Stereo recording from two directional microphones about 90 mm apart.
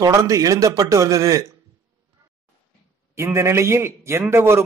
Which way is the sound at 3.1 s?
35° right (ahead or behind).